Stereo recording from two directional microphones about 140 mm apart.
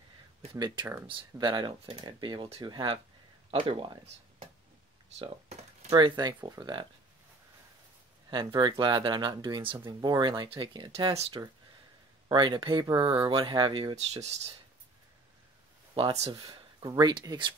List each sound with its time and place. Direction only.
1.0 s speech: 35° right (ahead or behind)
5.2 s a sound: 50° right (ahead or behind)
5.9 s speech: 30° right (ahead or behind)
8.3 s speech: 35° right (ahead or behind)
16.1 s speech: 25° right (ahead or behind)